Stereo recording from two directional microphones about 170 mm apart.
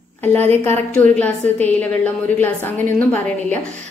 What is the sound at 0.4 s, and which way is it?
Speech, 40° right (ahead or behind).